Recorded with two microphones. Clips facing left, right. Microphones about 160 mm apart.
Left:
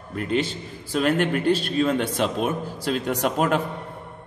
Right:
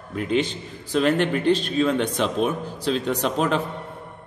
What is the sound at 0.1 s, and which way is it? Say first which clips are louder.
A man's voice: right 1 dB; centre (ahead or behind).